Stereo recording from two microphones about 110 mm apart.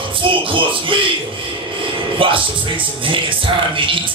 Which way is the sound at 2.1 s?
50° right (ahead or behind).